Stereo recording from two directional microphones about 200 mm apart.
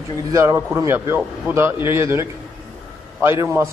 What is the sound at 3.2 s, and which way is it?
Speech, 10° right (ahead or behind).